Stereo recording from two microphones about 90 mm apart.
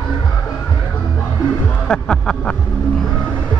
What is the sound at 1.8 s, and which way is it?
Music, 10° left (ahead or behind).